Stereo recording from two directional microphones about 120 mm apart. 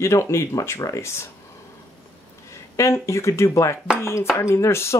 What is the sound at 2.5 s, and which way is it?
Speech, 25° left (ahead or behind).